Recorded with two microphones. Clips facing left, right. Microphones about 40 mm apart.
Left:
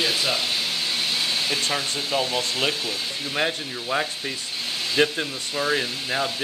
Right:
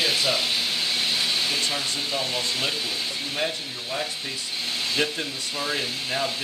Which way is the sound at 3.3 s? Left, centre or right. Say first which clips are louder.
Left 5 dB; left.